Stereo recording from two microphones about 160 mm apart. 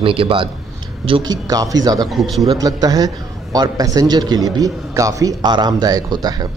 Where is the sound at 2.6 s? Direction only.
25° right (ahead or behind).